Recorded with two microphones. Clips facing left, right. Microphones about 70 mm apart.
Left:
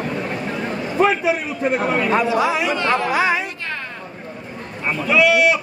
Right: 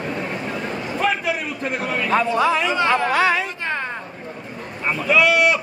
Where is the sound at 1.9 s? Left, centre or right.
Centre.